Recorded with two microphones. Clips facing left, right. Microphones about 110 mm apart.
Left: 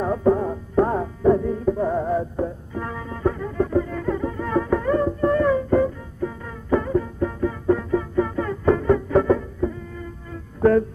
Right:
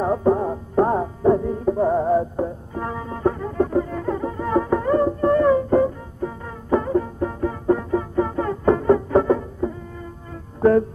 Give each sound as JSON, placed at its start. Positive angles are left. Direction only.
{"t": 0.0, "sound": "music", "side_deg": -25}